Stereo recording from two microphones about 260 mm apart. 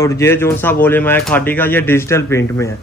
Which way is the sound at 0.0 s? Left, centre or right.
Centre.